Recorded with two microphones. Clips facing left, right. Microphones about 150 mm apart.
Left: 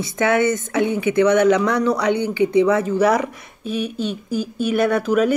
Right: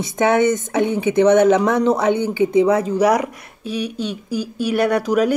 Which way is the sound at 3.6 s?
50° left (ahead or behind).